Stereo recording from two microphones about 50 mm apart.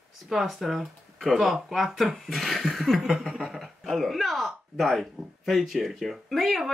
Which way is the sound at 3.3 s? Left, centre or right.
Centre.